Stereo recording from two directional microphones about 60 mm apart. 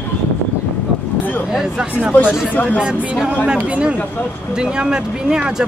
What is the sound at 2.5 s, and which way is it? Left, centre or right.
Speech, left.